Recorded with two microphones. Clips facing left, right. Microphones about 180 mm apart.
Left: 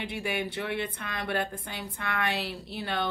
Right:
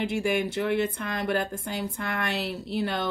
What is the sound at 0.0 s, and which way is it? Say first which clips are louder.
Speech: right 6 dB; 45° right (ahead or behind).